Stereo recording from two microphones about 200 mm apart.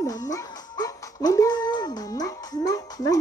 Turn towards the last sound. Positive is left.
turn(degrees=15)  # may be behind; listen again after turning